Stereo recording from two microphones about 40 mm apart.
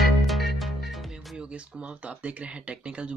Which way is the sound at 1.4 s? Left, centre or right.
Right.